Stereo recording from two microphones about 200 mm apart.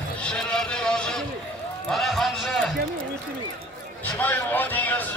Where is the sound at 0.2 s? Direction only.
5° left (ahead or behind).